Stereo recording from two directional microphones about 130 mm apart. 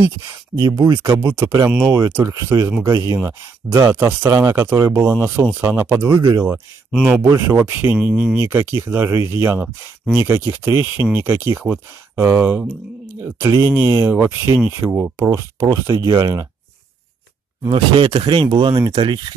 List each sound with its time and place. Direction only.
0.6 s speech: 25° right (ahead or behind)
17.6 s speech: 40° right (ahead or behind)